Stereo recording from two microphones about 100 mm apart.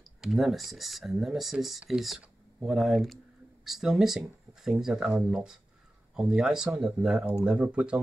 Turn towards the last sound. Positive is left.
turn(degrees=-10)  # may be behind; listen again after turning